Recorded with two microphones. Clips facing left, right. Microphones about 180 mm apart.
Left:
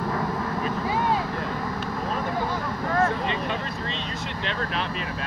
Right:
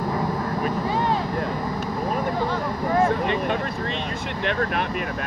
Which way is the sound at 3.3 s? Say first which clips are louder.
Right 4 dB; 55° right (ahead or behind).